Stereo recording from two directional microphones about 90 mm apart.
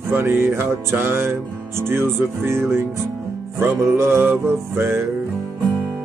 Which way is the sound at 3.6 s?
30° right (ahead or behind).